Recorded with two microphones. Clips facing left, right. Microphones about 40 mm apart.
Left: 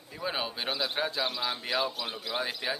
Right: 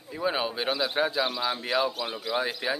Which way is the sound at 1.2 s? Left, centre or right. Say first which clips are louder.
Right 3 dB; right.